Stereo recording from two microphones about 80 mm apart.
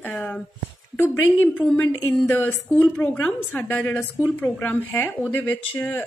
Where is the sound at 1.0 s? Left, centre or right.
Left.